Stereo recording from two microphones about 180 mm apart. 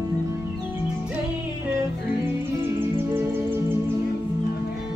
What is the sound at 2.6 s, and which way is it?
Music, 10° right (ahead or behind).